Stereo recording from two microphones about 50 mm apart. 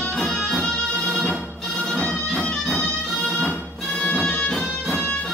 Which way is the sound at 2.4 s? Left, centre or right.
Centre.